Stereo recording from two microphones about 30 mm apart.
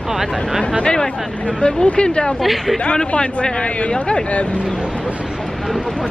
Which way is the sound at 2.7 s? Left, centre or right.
Left.